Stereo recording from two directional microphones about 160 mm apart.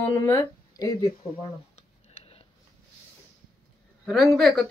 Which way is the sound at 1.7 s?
35° left (ahead or behind).